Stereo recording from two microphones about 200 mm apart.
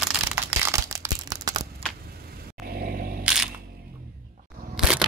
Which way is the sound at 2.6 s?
50° right (ahead or behind).